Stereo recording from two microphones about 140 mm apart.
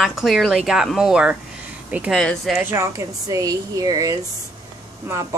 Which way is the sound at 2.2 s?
Centre (ahead or behind).